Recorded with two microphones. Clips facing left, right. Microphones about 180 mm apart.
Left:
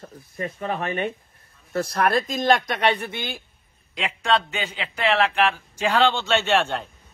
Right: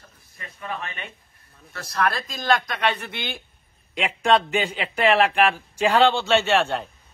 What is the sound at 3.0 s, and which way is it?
Speech, 10° left (ahead or behind).